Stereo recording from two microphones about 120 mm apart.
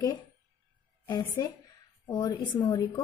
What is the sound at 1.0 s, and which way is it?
A woman's voice, 35° left (ahead or behind).